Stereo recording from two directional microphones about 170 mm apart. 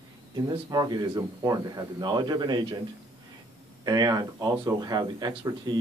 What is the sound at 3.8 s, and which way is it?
Speech, 20° right (ahead or behind).